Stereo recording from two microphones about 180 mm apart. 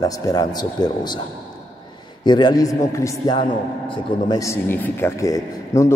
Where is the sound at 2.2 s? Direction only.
25° left (ahead or behind).